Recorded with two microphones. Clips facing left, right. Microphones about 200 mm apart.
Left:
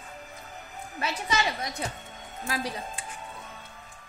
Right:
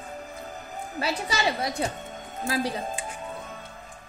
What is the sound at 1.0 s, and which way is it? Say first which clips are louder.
A woman's voice: right 1 dB; 35° right (ahead or behind).